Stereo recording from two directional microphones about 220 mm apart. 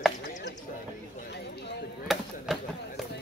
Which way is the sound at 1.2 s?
50° left (ahead or behind).